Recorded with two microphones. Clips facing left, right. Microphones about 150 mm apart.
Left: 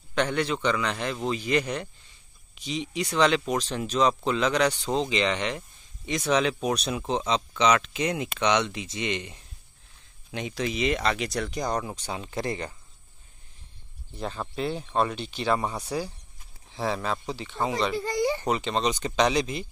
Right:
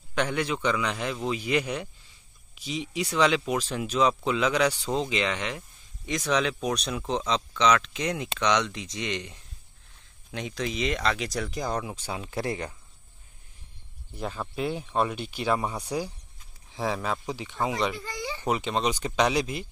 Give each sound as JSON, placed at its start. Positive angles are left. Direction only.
{"t": 0.1, "sound": "speech", "side_deg": -10}
{"t": 14.1, "sound": "speech", "side_deg": -10}
{"t": 17.9, "sound": "a sound", "side_deg": 40}
{"t": 18.4, "sound": "speech", "side_deg": -10}